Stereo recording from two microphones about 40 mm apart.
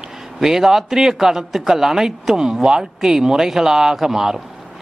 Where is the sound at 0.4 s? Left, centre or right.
Centre.